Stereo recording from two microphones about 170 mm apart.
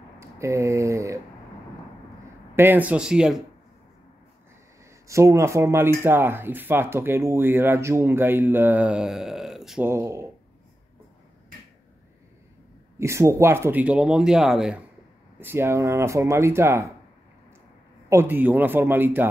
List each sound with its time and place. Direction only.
0.2 s a sound: 15° right (ahead or behind)
2.5 s speech: 10° right (ahead or behind)
5.0 s speech: 15° right (ahead or behind); by 9.8 s centre (ahead or behind)
9.8 s speech: 15° right (ahead or behind)
13.0 s speech: 15° right (ahead or behind)
15.3 s speech: 15° right (ahead or behind)
18.1 s speech: 10° right (ahead or behind)